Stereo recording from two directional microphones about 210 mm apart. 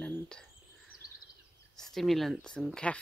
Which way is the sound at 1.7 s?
Centre (ahead or behind).